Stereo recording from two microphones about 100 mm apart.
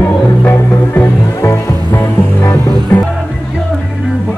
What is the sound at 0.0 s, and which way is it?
Music, 20° left (ahead or behind).